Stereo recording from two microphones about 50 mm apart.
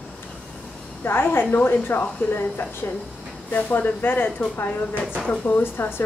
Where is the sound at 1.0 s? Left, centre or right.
Left.